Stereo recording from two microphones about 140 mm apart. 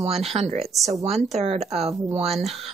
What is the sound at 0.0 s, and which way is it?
A woman's voice, 45° right (ahead or behind).